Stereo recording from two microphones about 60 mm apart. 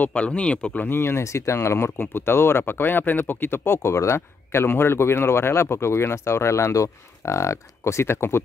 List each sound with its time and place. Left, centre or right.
0.0 s speech: left
0.8 s speech: left